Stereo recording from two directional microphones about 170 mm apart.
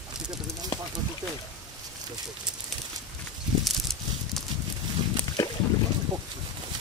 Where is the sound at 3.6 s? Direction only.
Centre (ahead or behind).